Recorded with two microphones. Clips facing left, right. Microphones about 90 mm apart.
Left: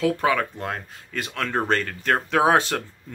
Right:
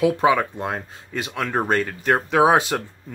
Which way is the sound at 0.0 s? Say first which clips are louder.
Right 4 dB; 15° right (ahead or behind).